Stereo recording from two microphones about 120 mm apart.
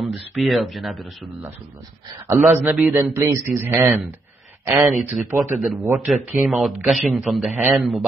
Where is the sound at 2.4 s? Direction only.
Centre (ahead or behind).